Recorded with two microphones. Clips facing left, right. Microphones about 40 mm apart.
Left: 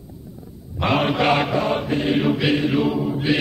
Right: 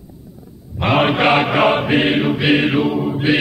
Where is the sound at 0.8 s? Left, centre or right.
Right.